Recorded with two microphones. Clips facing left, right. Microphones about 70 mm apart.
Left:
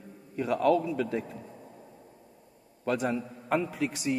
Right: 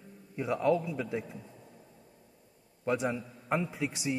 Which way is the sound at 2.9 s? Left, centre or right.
Centre.